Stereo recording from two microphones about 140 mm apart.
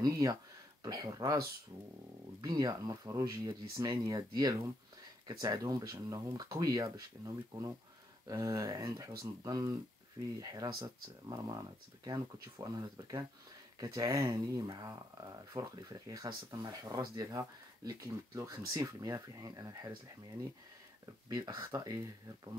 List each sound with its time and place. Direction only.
0.0 s speech: 30° right (ahead or behind)
2.4 s speech: 30° right (ahead or behind)
21.0 s speech: 25° right (ahead or behind)